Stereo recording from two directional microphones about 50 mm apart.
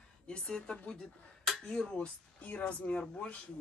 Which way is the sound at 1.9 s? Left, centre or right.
Left.